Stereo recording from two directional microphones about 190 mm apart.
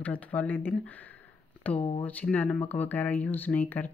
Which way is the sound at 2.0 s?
10° left (ahead or behind).